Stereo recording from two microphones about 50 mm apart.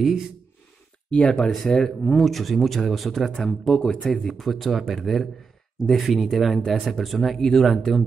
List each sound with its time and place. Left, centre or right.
1.1 s speech: left
1.5 s speech: centre
4.3 s speech: centre